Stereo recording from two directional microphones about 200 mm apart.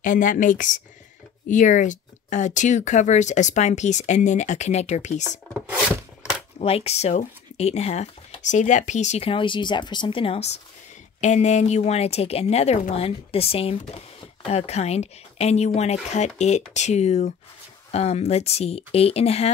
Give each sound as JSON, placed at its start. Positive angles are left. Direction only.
{"t": 0.0, "sound": "speech", "side_deg": 40}
{"t": 5.5, "sound": "a sound", "side_deg": -5}
{"t": 6.6, "sound": "speech", "side_deg": 30}